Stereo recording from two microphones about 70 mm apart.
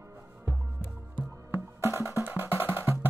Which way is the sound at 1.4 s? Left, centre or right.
Right.